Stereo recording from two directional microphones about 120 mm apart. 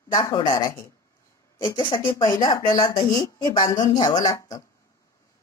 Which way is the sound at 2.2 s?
30° left (ahead or behind).